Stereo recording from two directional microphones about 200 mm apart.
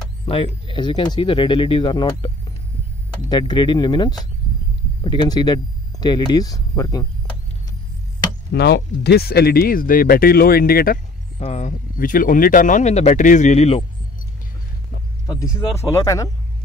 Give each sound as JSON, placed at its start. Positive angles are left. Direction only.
{"t": 0.2, "sound": "speech", "side_deg": 25}
{"t": 8.5, "sound": "speech", "side_deg": 55}
{"t": 11.3, "sound": "speech", "side_deg": 35}
{"t": 15.2, "sound": "speech", "side_deg": 15}